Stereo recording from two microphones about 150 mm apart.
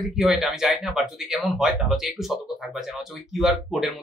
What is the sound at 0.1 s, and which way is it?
Speech, 5° right (ahead or behind).